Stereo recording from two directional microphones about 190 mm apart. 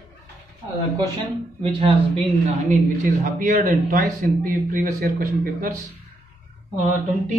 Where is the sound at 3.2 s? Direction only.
40° right (ahead or behind).